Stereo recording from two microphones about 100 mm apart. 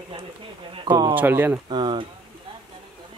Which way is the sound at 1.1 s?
20° right (ahead or behind).